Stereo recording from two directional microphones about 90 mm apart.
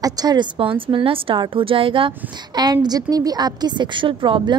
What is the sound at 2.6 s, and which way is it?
A woman's voice, 50° right (ahead or behind).